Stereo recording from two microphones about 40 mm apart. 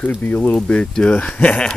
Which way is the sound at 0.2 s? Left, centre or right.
Left.